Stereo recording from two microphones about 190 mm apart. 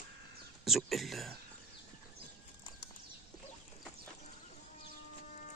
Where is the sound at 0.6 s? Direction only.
Centre (ahead or behind).